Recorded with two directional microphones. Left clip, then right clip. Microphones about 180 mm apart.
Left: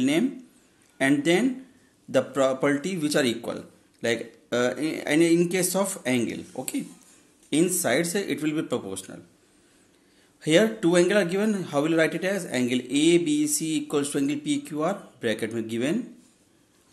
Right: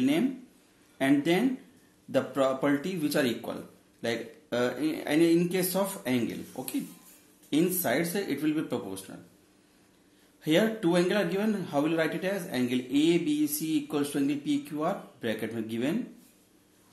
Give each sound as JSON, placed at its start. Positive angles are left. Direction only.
{"t": 0.9, "sound": "a man's voice", "side_deg": 35}
{"t": 10.4, "sound": "a man's voice", "side_deg": 35}